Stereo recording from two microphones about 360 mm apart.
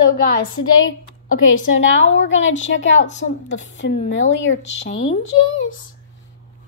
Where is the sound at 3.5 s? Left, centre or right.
Left.